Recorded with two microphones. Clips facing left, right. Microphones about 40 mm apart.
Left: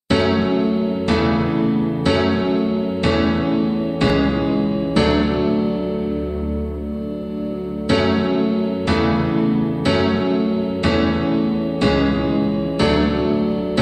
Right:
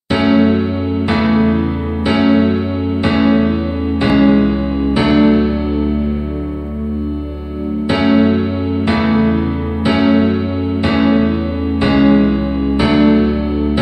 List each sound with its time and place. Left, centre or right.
0.1 s music: centre
7.9 s music: centre